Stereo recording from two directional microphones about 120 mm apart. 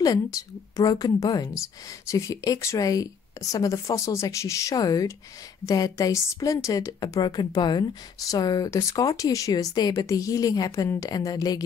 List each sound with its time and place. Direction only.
0.0 s a woman's voice: 30° left (ahead or behind)